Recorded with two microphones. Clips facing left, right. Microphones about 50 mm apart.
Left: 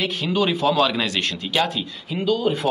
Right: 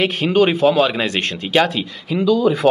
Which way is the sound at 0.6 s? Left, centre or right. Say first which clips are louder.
Right 4 dB; right.